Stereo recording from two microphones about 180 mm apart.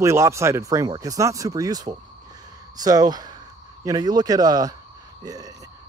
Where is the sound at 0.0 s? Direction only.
15° right (ahead or behind).